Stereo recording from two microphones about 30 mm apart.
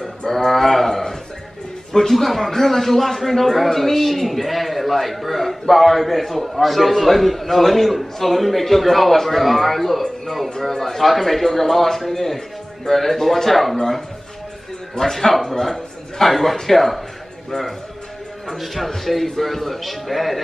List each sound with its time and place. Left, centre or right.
0.3 s a sound: centre
1.9 s a man's voice: centre
10.0 s a man's voice: centre
18.6 s a man's voice: centre